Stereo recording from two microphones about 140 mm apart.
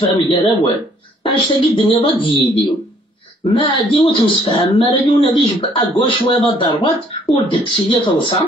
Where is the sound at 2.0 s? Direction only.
40° left (ahead or behind).